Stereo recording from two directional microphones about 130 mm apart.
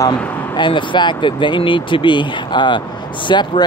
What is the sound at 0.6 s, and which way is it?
Speech, 40° left (ahead or behind).